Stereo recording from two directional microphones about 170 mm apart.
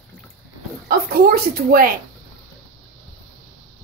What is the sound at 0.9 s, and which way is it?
A woman's voice, 60° right (ahead or behind).